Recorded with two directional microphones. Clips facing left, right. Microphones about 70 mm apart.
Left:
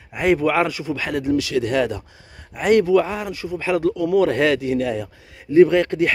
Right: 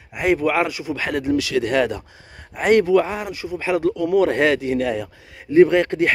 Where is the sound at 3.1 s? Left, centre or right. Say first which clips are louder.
Even; centre.